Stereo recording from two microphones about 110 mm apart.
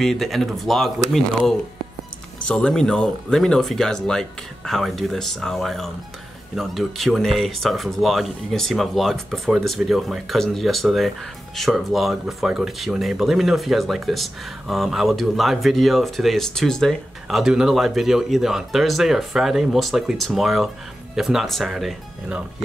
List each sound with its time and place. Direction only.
0.0 s speech: centre (ahead or behind)
2.4 s speech: 10° left (ahead or behind)